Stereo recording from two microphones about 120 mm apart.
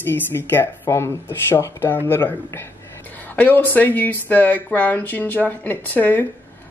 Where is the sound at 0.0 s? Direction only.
20° left (ahead or behind).